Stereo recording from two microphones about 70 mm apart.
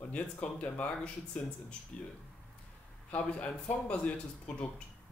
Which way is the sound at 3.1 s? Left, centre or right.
Centre.